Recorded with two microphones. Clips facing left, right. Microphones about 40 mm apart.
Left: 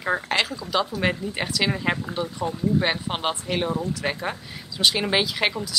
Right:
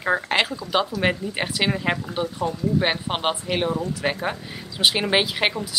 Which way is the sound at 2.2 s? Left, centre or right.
Right.